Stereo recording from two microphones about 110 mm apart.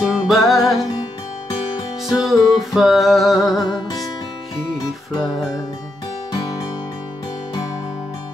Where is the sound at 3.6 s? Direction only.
35° left (ahead or behind).